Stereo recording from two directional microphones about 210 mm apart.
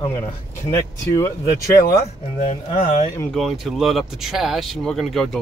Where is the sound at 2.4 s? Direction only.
30° left (ahead or behind).